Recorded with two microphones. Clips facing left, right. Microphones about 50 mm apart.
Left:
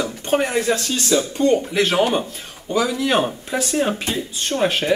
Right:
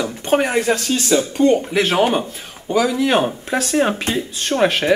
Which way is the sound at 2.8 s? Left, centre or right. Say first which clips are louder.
Right 3 dB; right.